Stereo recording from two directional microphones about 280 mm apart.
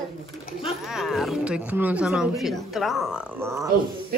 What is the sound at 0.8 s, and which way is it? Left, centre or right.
A woman's voice, centre.